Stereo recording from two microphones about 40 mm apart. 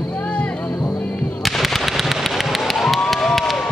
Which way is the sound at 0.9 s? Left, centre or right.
Left.